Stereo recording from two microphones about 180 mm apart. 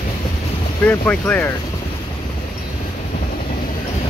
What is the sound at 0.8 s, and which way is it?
Speech, 10° left (ahead or behind).